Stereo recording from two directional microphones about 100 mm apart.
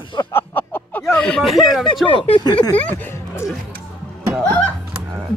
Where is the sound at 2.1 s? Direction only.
50° left (ahead or behind).